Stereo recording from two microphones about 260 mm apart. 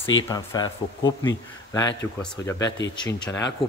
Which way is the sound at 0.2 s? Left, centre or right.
Centre.